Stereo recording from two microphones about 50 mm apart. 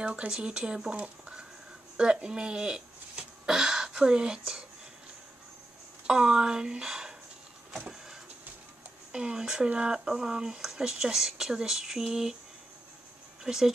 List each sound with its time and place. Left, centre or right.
0.0 s speech: right
6.0 s speech: centre
7.9 s vehicle: centre
9.1 s speech: centre
13.4 s speech: centre